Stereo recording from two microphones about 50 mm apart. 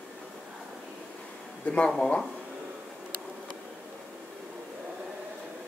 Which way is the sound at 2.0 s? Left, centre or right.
Centre.